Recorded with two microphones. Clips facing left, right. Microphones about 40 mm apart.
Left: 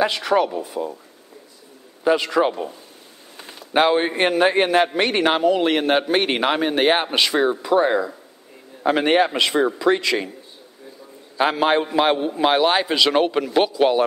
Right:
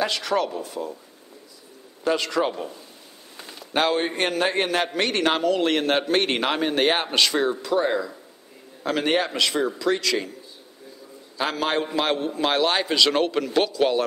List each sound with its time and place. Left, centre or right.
0.0 s a man's voice: centre
2.0 s a man's voice: centre
11.3 s a man's voice: left